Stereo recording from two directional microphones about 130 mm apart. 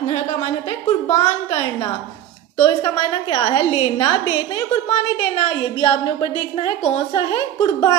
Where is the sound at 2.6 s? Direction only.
40° left (ahead or behind).